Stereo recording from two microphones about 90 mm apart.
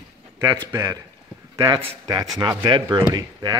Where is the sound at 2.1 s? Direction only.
45° right (ahead or behind).